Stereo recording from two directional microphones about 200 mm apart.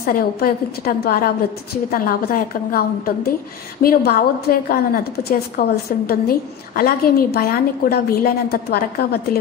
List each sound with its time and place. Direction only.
0.0 s a woman's voice: 50° left (ahead or behind)
3.8 s a woman's voice: 50° left (ahead or behind)